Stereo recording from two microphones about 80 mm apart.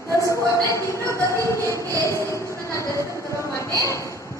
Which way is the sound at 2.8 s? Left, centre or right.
Left.